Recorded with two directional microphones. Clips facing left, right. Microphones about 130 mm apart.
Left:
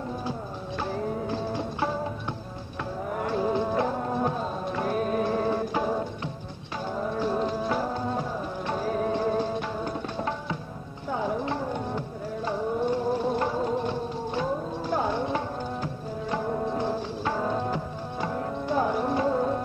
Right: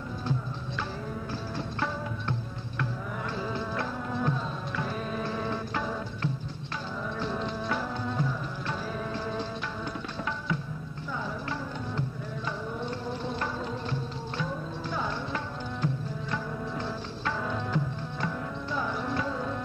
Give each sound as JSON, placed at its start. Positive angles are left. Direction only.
{"t": 1.5, "sound": "music", "side_deg": 15}
{"t": 3.2, "sound": "music", "side_deg": 50}
{"t": 11.1, "sound": "music", "side_deg": 55}
{"t": 13.2, "sound": "music", "side_deg": 45}